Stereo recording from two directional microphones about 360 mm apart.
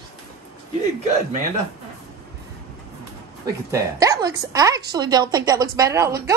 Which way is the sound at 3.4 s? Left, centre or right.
Centre.